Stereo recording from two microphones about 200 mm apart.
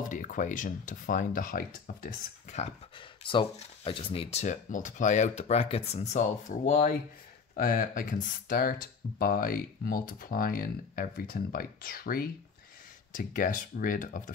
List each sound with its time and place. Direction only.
0.0 s speech: 40° left (ahead or behind)
3.3 s speech: 25° left (ahead or behind); by 14.3 s 45° left (ahead or behind)